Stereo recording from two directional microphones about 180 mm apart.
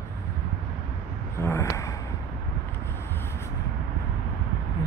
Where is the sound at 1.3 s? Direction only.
15° left (ahead or behind).